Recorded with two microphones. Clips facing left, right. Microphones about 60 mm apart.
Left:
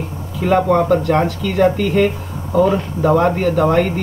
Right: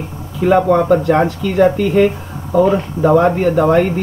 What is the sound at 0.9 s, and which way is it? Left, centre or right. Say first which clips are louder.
Speech: right 2 dB; centre.